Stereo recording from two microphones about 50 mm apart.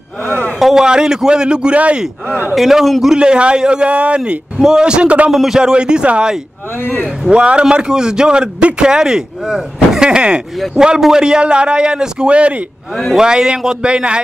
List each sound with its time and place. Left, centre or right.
0.2 s a sound: left
0.6 s a sound: centre
0.8 s speech: centre
2.5 s a man's voice: centre
3.2 s a man's voice: right
4.6 s a man's voice: centre
5.3 s a man's voice: centre